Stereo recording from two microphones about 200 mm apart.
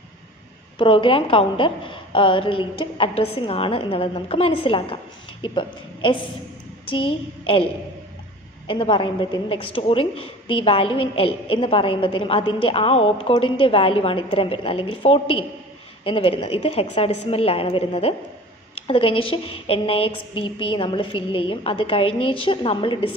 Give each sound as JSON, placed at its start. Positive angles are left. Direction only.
{"t": 0.7, "sound": "a woman's voice", "side_deg": 25}
{"t": 8.6, "sound": "a woman's voice", "side_deg": 25}